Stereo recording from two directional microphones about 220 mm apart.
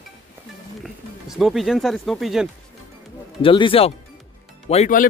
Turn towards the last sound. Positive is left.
turn(degrees=30)  # may be behind; listen again after turning